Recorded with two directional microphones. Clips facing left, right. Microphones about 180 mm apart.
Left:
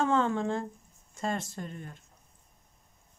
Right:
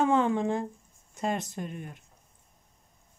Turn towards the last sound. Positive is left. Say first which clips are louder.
# right 3 dB
turn(degrees=-15)  # may be behind; listen again after turning